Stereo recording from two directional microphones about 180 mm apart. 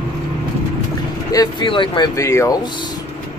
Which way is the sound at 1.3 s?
25° left (ahead or behind).